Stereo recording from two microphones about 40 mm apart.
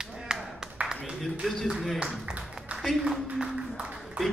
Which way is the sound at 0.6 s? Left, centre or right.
Centre.